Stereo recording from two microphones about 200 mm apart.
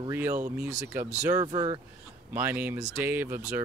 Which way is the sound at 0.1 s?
10° right (ahead or behind).